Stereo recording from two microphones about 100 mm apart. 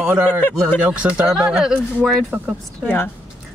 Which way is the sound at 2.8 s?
20° left (ahead or behind).